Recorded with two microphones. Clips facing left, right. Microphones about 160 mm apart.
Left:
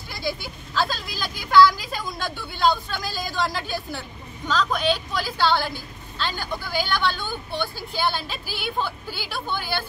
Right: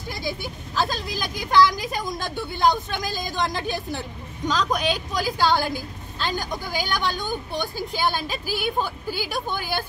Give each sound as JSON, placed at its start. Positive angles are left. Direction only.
{"t": 0.1, "sound": "a woman's voice", "side_deg": -15}
{"t": 6.8, "sound": "speech", "side_deg": -45}
{"t": 7.1, "sound": "a woman's voice", "side_deg": -15}
{"t": 8.5, "sound": "speech", "side_deg": -45}
{"t": 8.7, "sound": "a woman's voice", "side_deg": -15}